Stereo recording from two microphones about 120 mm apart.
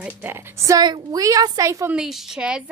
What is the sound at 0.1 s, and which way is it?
A woman's voice, 20° right (ahead or behind).